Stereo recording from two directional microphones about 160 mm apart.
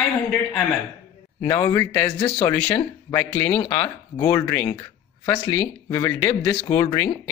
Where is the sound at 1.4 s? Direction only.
20° left (ahead or behind).